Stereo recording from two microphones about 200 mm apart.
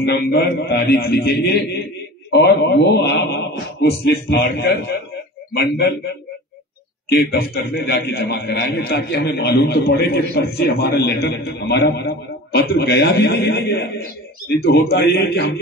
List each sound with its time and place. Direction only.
0.0 s a man's voice: 55° left (ahead or behind)
7.1 s a man's voice: 50° left (ahead or behind)